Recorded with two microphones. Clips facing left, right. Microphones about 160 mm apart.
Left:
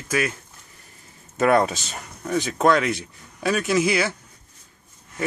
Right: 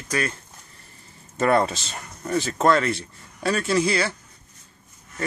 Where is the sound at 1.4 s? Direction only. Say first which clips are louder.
Left 2 dB; centre (ahead or behind).